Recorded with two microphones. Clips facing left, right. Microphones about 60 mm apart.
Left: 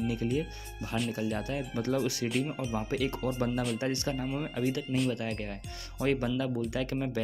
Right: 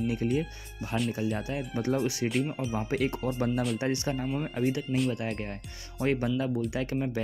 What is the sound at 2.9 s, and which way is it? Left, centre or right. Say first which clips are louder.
Speech: right 3 dB; centre.